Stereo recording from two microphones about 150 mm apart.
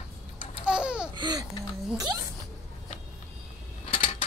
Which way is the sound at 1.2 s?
30° right (ahead or behind).